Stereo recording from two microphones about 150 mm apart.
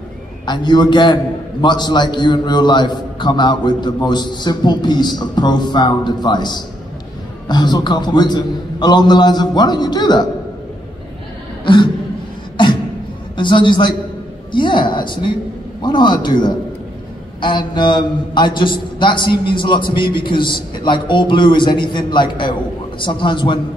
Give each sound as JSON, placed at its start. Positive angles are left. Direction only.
{"t": 0.5, "sound": "a man's voice", "side_deg": 30}
{"t": 11.7, "sound": "a man's voice", "side_deg": 35}
{"t": 13.4, "sound": "a man's voice", "side_deg": 30}